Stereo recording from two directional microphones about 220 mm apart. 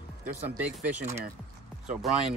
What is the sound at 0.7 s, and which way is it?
Speech, 5° right (ahead or behind).